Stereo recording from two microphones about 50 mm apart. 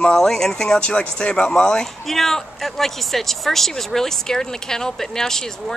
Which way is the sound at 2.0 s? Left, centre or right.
Centre.